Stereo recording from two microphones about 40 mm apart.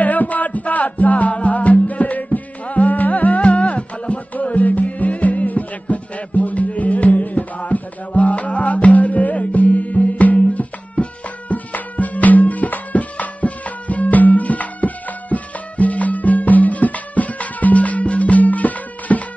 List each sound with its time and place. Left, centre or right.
0.0 s music: left